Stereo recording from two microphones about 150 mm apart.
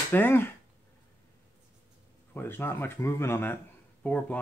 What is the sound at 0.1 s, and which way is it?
Speech, 15° left (ahead or behind).